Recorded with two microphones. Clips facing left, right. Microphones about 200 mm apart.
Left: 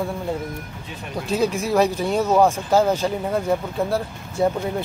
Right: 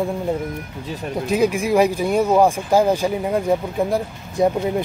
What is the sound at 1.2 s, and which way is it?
Speech, 10° right (ahead or behind).